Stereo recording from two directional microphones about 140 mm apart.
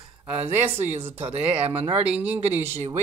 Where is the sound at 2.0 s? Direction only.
10° right (ahead or behind).